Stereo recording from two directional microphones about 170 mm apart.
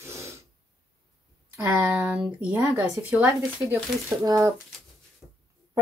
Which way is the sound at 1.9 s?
5° right (ahead or behind).